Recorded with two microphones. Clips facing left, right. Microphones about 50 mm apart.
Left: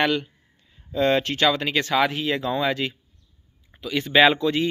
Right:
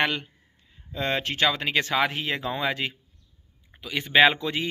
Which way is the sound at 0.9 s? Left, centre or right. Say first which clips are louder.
Left 7 dB; centre.